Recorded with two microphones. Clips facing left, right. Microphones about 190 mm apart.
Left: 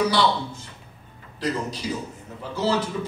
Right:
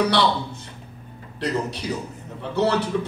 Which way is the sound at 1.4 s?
65° right (ahead or behind).